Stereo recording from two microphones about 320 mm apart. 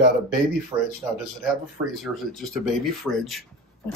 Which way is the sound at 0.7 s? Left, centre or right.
Centre.